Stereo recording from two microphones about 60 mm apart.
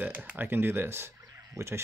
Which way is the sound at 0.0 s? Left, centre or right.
Right.